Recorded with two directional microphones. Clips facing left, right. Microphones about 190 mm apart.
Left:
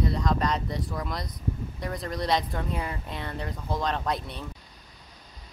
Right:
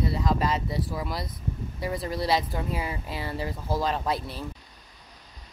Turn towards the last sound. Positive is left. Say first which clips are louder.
# right 1 dB
turn(degrees=-5)  # may be behind; listen again after turning